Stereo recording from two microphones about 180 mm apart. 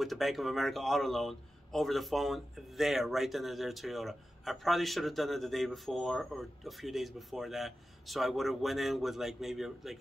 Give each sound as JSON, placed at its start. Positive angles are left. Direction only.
{"t": 0.0, "sound": "a man's voice", "side_deg": 0}